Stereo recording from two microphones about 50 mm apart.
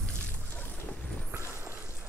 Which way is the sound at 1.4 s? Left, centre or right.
Right.